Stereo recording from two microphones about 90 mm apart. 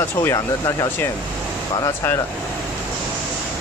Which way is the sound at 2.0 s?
25° left (ahead or behind).